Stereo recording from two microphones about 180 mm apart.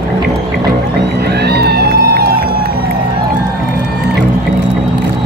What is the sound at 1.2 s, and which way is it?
Music, 65° right (ahead or behind).